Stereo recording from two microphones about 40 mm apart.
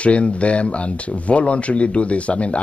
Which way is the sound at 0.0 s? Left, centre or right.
Left.